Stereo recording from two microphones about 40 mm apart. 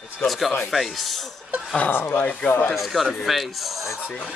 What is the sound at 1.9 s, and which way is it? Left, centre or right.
Speech, left.